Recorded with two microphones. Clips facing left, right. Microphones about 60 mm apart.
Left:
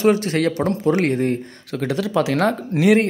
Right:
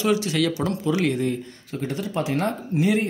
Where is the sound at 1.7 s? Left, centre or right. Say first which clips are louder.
Left 6 dB; left.